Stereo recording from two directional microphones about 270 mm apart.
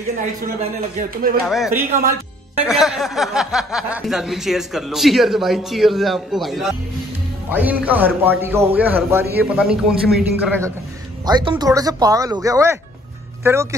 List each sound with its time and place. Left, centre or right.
1.5 s speech: centre
1.9 s a man's voice: right
2.6 s a man's voice: centre